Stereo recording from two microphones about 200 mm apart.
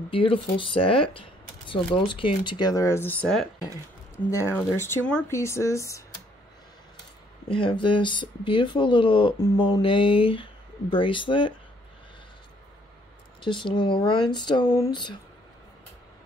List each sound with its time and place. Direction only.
0.1 s speech: 25° left (ahead or behind)
7.6 s speech: 25° left (ahead or behind)
13.4 s speech: 25° left (ahead or behind)